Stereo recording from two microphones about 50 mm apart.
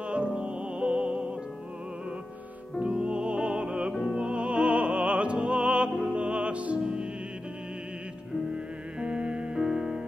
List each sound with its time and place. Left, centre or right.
0.0 s music: right
2.8 s music: centre
9.0 s music: right
9.6 s music: centre